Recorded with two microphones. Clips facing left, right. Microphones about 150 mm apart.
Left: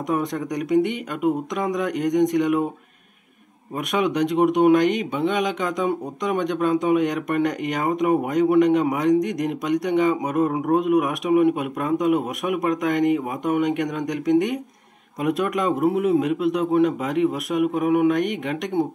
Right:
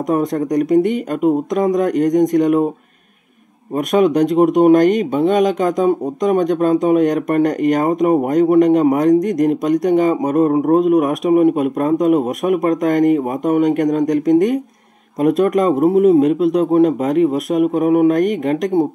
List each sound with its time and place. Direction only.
0.1 s speech: 40° right (ahead or behind)
3.7 s speech: 40° right (ahead or behind)